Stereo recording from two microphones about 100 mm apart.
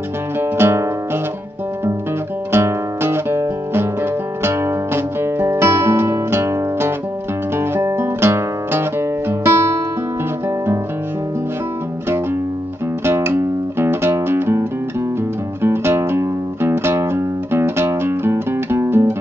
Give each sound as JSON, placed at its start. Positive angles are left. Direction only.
{"t": 0.4, "sound": "music", "side_deg": -25}
{"t": 2.5, "sound": "guitar", "side_deg": -25}
{"t": 7.5, "sound": "music", "side_deg": -25}
{"t": 13.0, "sound": "music", "side_deg": -25}